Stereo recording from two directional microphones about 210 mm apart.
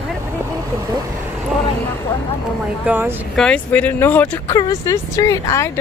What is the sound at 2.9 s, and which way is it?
Speech, 10° right (ahead or behind).